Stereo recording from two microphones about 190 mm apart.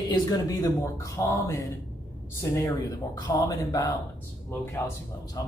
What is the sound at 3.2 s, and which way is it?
Speech, 20° left (ahead or behind).